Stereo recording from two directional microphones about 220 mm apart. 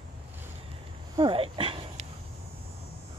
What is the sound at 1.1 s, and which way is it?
Dog, 25° right (ahead or behind).